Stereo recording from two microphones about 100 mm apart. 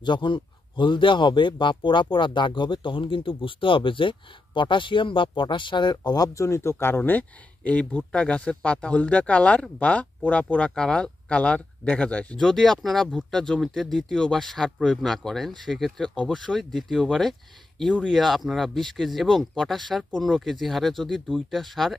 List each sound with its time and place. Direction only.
0.0 s a man's voice: 55° left (ahead or behind); by 21.9 s centre (ahead or behind)